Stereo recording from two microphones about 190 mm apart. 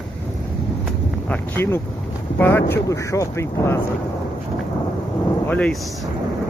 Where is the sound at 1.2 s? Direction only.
10° left (ahead or behind).